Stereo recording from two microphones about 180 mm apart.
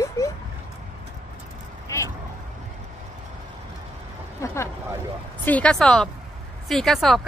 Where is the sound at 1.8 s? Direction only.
15° left (ahead or behind).